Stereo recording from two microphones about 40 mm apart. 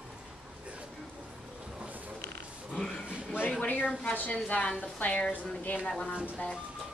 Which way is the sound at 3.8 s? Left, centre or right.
Left.